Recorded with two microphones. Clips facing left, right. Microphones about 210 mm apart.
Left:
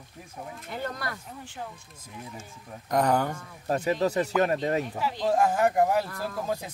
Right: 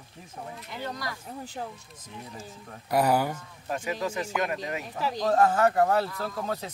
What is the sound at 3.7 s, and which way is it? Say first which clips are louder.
Speech: left 5 dB; 40° left (ahead or behind).